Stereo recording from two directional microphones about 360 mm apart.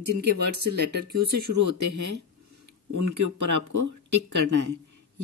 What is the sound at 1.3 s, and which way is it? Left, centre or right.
Speech, right.